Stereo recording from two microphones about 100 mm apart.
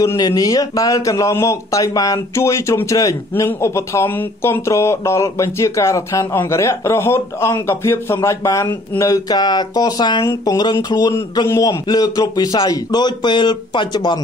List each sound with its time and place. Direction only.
0.0 s speech: 30° left (ahead or behind)